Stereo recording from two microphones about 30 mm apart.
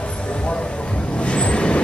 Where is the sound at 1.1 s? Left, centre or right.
Left.